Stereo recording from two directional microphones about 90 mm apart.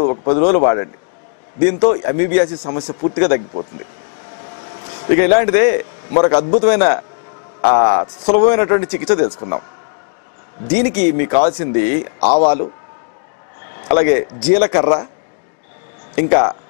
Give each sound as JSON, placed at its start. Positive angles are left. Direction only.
{"t": 0.0, "sound": "a man's voice", "side_deg": 20}
{"t": 5.0, "sound": "a man's voice", "side_deg": 15}
{"t": 10.7, "sound": "a man's voice", "side_deg": 15}
{"t": 13.8, "sound": "a man's voice", "side_deg": 15}
{"t": 16.2, "sound": "speech", "side_deg": 20}